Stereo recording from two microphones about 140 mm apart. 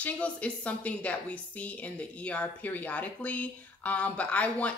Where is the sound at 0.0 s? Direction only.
10° left (ahead or behind).